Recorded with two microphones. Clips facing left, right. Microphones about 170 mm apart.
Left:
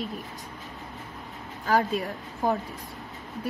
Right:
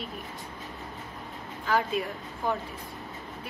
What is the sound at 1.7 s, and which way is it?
Speech, 40° left (ahead or behind).